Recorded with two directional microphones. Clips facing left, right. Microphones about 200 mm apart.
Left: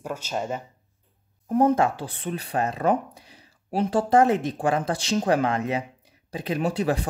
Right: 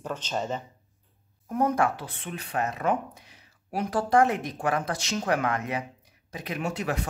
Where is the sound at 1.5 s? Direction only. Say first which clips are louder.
Left 5 dB; 30° left (ahead or behind).